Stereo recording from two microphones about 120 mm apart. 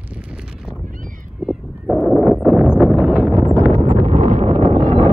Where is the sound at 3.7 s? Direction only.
85° right.